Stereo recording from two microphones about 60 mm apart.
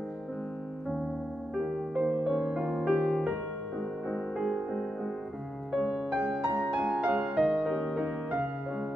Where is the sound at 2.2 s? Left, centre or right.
Centre.